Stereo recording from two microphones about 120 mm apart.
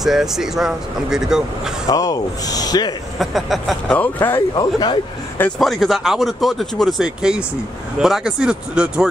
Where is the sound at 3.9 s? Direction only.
15° left (ahead or behind).